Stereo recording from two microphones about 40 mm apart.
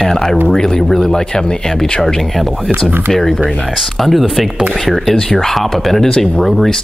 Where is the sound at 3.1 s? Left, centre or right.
Centre.